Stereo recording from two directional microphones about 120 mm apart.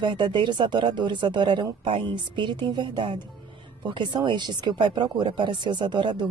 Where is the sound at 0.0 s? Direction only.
40° right (ahead or behind).